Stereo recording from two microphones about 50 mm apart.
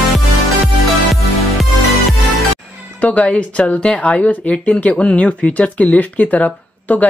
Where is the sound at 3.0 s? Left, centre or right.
Left.